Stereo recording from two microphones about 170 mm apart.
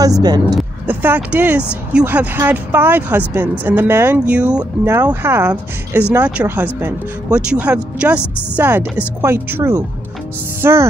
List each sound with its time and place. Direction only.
0.0 s a woman's voice: 20° right (ahead or behind)